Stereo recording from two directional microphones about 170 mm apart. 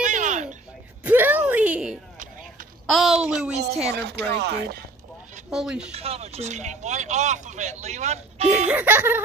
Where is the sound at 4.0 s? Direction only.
75° right (ahead or behind).